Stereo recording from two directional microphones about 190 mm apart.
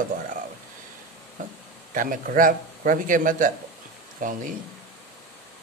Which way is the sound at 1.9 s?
45° right (ahead or behind).